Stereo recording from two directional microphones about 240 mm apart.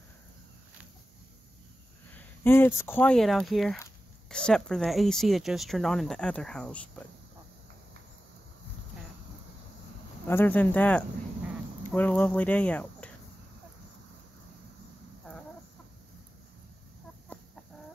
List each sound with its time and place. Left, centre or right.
2.1 s speech: centre
10.2 s speech: centre